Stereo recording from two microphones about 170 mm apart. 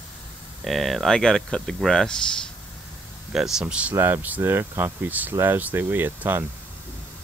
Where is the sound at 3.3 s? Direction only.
5° right (ahead or behind).